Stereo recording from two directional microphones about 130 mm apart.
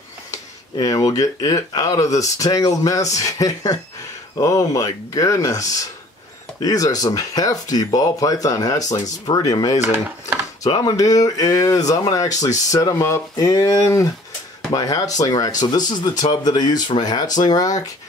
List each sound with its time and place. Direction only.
0.3 s speech: 25° left (ahead or behind)